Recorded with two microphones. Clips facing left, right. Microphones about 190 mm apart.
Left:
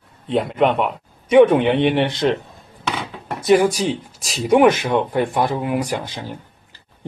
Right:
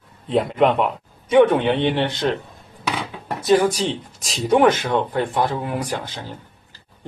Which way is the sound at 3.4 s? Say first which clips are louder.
Left 2 dB; 15° left (ahead or behind).